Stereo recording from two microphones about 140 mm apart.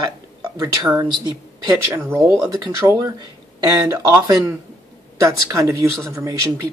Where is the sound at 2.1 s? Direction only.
20° right (ahead or behind).